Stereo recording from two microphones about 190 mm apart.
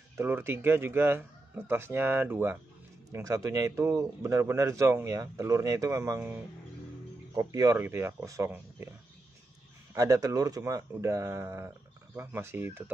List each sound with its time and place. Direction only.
0.2 s speech: 10° right (ahead or behind)
9.9 s speech: 15° right (ahead or behind)